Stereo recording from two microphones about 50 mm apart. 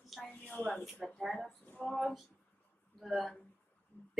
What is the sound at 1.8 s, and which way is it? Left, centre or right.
Speech, centre.